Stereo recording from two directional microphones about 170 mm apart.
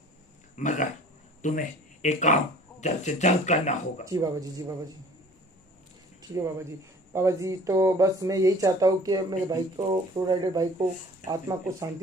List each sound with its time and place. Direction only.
0.6 s speech: 45° left (ahead or behind)
4.0 s speech: 20° right (ahead or behind)
6.3 s speech: 20° right (ahead or behind)